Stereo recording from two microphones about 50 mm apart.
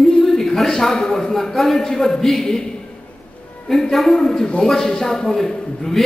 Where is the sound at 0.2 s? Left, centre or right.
Centre.